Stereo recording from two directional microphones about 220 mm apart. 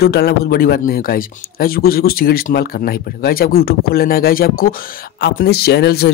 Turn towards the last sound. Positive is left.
turn(degrees=45)  # may be behind; listen again after turning